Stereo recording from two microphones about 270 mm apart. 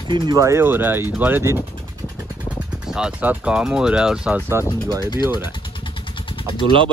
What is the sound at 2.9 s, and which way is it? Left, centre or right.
Speech, centre.